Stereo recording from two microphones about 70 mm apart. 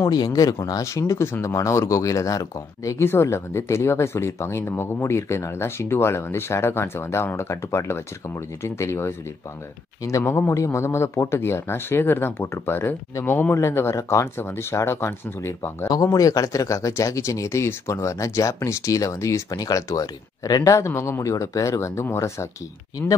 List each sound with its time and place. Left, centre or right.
0.1 s speech: left
10.5 s speech: left
15.9 s speech: left